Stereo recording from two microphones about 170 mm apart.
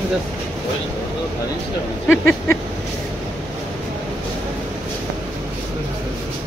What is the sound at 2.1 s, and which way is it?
Speech, 10° left (ahead or behind).